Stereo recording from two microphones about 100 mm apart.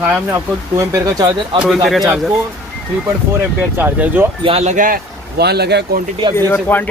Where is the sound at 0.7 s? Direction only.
35° right (ahead or behind).